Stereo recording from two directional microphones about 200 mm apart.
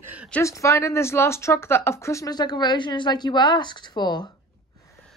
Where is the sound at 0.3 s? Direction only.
15° left (ahead or behind).